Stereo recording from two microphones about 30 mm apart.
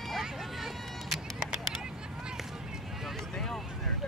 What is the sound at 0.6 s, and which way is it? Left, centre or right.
Vehicle, centre.